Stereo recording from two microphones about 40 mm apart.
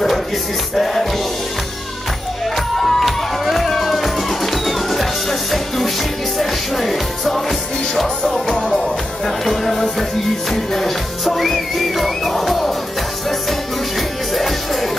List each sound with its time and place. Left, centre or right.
0.7 s music: centre
2.5 s music: centre
8.5 s music: left
8.8 s music: centre
14.3 s music: centre